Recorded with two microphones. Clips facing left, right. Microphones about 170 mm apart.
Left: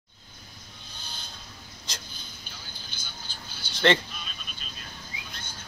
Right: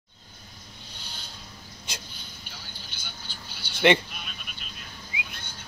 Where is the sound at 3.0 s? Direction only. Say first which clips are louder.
Right 1 dB; 60° right (ahead or behind).